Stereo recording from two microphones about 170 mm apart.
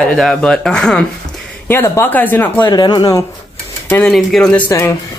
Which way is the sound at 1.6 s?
15° left (ahead or behind).